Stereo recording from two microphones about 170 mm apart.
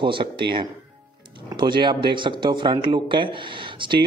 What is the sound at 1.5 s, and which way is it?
A man's voice, 25° right (ahead or behind).